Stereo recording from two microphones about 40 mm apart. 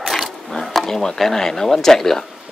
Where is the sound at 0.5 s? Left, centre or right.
Centre.